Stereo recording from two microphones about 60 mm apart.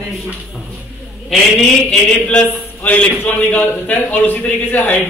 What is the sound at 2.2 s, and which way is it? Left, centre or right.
A man's voice, centre.